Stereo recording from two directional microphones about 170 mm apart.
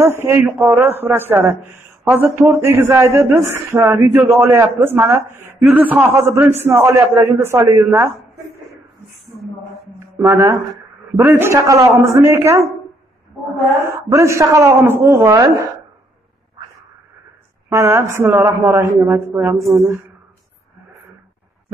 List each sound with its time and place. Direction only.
0.0 s a man's voice: 15° right (ahead or behind)
9.9 s mantra: 15° right (ahead or behind)
11.1 s a man's voice: 15° right (ahead or behind)
13.8 s a man's voice: 15° right (ahead or behind)
17.6 s a man's voice: 15° right (ahead or behind)
19.6 s speech: centre (ahead or behind)